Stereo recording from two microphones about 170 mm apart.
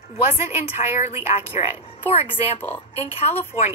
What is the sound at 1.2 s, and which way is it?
A woman's voice, 35° left (ahead or behind).